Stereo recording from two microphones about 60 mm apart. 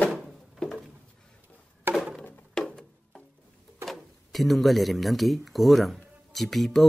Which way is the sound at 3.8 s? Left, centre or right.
Centre.